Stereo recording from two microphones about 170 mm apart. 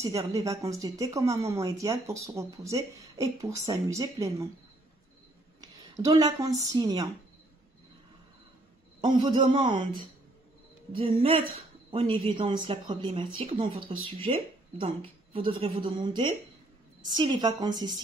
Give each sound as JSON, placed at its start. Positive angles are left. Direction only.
{"t": 0.0, "sound": "speech", "side_deg": -20}
{"t": 5.6, "sound": "speech", "side_deg": -20}
{"t": 9.0, "sound": "speech", "side_deg": -30}
{"t": 10.9, "sound": "speech", "side_deg": -30}